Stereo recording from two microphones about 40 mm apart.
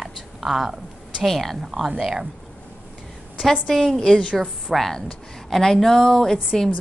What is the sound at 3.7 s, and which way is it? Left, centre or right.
Speech, centre.